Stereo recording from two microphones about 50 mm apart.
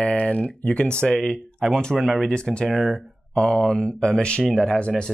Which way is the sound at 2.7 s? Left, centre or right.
Centre.